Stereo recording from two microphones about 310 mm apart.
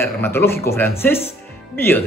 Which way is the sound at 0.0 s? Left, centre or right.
Centre.